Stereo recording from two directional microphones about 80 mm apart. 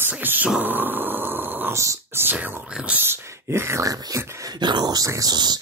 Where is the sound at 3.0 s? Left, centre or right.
Right.